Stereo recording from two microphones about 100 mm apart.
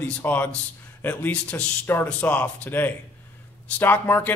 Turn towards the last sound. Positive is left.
turn(degrees=20)  # may be behind; listen again after turning